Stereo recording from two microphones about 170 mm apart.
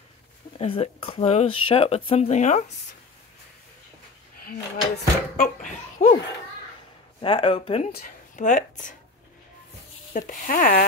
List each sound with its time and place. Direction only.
0.6 s speech: 35° left (ahead or behind)
4.5 s a child's voice: 55° left (ahead or behind)
7.2 s speech: 30° left (ahead or behind)
7.9 s a woman's voice: 55° left (ahead or behind)
10.1 s a child's voice: 50° left (ahead or behind)